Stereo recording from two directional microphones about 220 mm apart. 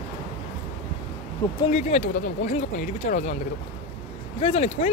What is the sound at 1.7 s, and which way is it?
Speech, 30° left (ahead or behind).